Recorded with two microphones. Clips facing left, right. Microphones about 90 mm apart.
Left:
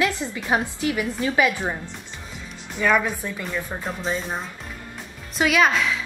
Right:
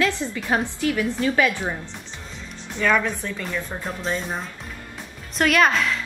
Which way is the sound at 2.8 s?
10° left (ahead or behind).